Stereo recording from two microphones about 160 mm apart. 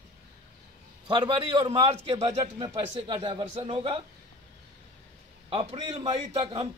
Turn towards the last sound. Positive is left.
turn(degrees=-35)  # may be behind; listen again after turning